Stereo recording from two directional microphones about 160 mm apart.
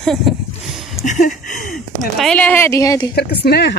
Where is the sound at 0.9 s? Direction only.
50° left (ahead or behind).